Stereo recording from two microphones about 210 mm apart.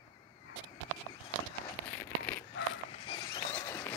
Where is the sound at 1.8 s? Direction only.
10° left (ahead or behind).